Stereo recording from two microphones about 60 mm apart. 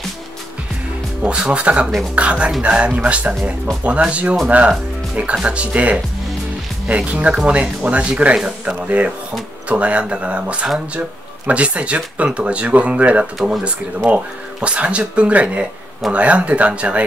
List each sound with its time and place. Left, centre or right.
1.2 s speech: centre
7.1 s speech: right